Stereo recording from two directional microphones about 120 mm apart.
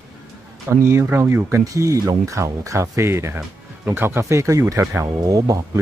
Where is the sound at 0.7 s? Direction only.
20° right (ahead or behind).